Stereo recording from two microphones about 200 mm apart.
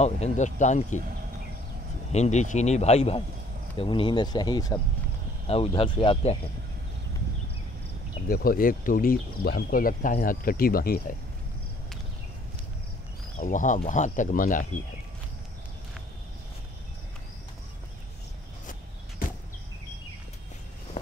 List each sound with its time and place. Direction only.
0.0 s speech: 35° left (ahead or behind)
2.1 s speech: 35° left (ahead or behind)
8.3 s speech: 45° left (ahead or behind)
13.4 s speech: 40° left (ahead or behind)